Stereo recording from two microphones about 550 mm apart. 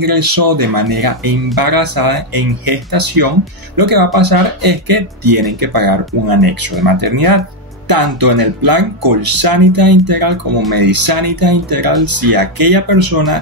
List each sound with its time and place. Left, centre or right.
0.0 s speech: right